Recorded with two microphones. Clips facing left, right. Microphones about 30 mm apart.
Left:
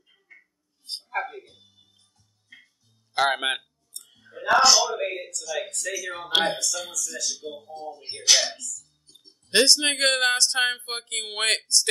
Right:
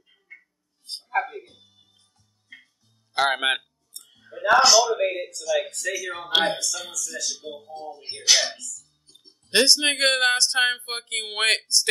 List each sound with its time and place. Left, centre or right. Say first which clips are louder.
0.0 s a sound: right 5 dB; centre
1.0 s music: right 4 dB; centre
2.5 s music: right 3 dB; centre
3.2 s a sound: right 1 dB; centre
4.6 s speech: right 2 dB; centre
7.7 s speech: even; centre
9.1 s music: right 1 dB; centre
9.5 s speech: right 1 dB; centre